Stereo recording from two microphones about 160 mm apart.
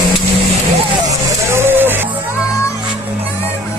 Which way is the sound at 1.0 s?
15° right (ahead or behind).